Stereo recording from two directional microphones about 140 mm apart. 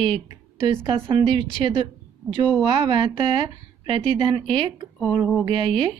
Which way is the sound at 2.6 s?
40° right (ahead or behind).